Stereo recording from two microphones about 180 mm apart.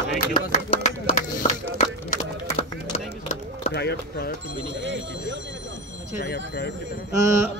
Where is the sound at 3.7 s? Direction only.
65° left (ahead or behind).